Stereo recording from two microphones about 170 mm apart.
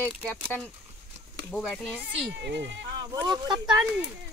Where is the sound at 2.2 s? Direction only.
90° right.